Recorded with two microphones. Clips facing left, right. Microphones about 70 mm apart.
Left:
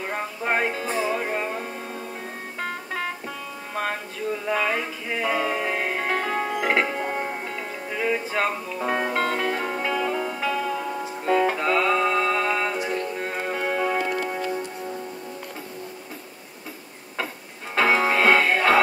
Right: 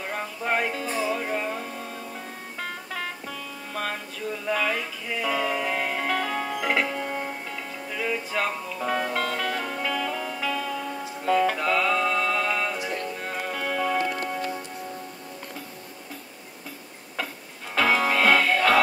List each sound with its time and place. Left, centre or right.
0.0 s music: left
3.7 s music: left
17.7 s music: left